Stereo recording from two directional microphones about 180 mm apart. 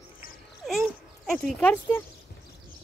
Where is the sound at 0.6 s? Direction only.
Centre (ahead or behind).